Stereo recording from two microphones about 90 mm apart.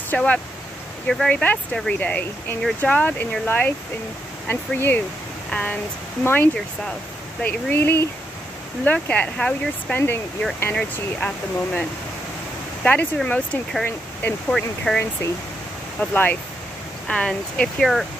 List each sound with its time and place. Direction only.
0.1 s speech: 15° left (ahead or behind)
1.0 s speech: 5° left (ahead or behind)
1.3 s speech: 15° left (ahead or behind)
12.8 s speech: 15° left (ahead or behind)
14.9 s speech: 15° left (ahead or behind)